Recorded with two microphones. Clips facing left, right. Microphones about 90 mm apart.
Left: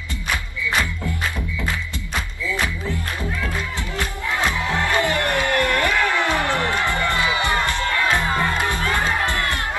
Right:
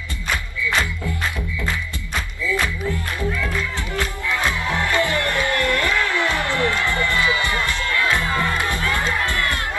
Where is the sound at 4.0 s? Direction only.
20° left (ahead or behind).